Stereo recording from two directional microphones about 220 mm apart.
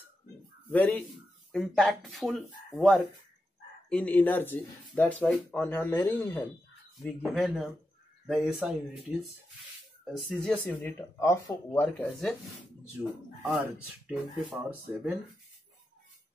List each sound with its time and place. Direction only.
0.7 s speech: 5° left (ahead or behind)
10.3 s speech: 5° left (ahead or behind)
13.4 s speech: 10° right (ahead or behind)